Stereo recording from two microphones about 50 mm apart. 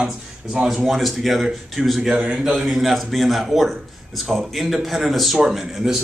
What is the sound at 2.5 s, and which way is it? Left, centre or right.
A man's voice, centre.